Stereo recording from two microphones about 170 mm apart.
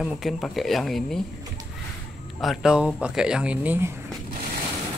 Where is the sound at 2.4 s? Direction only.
5° right (ahead or behind).